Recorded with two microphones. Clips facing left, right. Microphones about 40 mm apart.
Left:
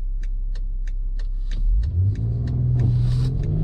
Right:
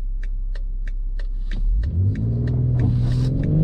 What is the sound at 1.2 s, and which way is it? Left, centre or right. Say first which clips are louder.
Car: right 4 dB; centre.